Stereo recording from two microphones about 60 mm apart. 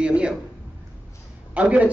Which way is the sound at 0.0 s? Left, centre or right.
Centre.